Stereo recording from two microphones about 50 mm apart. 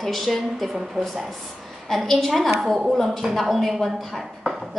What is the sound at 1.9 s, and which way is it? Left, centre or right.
A woman's voice, centre.